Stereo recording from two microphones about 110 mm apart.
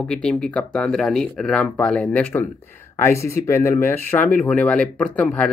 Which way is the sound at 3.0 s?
25° left (ahead or behind).